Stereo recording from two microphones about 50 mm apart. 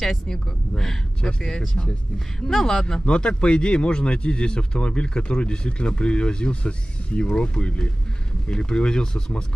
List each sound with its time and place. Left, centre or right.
0.0 s speech: centre